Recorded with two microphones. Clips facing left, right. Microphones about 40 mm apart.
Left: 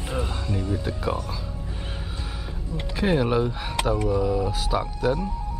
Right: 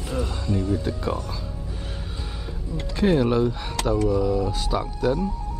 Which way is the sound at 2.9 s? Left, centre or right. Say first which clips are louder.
Right 2 dB; centre.